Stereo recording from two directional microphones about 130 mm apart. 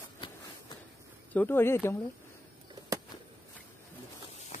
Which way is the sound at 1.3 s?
15° left (ahead or behind).